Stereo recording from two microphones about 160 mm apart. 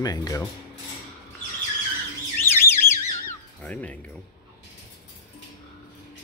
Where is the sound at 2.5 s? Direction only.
15° left (ahead or behind).